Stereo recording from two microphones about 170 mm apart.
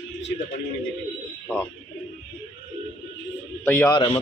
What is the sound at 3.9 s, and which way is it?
Speech, 25° left (ahead or behind).